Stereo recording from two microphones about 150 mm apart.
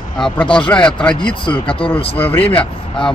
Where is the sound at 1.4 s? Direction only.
35° left (ahead or behind).